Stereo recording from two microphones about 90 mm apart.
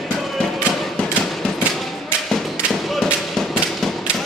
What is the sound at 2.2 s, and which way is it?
Thump, centre (ahead or behind).